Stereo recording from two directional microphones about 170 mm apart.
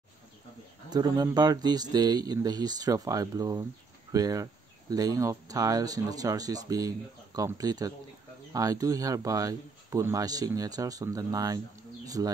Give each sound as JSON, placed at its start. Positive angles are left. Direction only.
{"t": 0.8, "sound": "a man's voice", "side_deg": -25}